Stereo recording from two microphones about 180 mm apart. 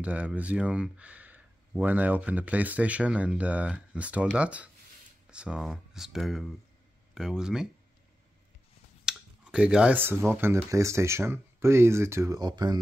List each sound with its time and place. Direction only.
0.0 s speech: 5° right (ahead or behind)
9.0 s speech: 5° right (ahead or behind); by 12.8 s 25° right (ahead or behind)